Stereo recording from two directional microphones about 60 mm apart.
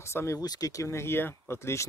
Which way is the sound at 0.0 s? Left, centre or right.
Left.